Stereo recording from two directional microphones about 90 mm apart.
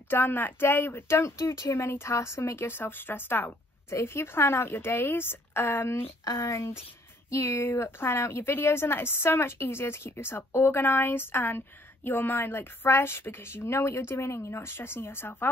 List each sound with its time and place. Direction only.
0.1 s a woman's voice: 20° left (ahead or behind)
6.2 s a woman's voice: 35° left (ahead or behind)